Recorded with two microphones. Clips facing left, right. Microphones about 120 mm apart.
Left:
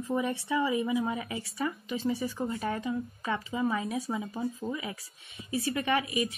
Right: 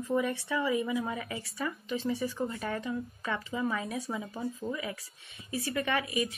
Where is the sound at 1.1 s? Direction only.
20° left (ahead or behind).